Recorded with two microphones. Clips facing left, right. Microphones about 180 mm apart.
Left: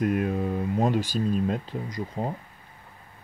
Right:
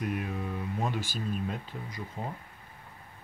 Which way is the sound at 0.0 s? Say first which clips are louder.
Left 9 dB; 65° left (ahead or behind).